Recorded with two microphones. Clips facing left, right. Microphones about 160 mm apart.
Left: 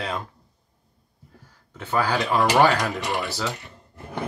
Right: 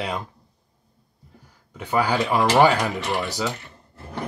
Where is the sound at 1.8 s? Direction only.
10° right (ahead or behind).